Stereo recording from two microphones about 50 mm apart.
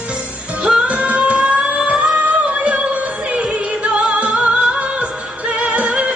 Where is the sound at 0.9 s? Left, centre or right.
Right.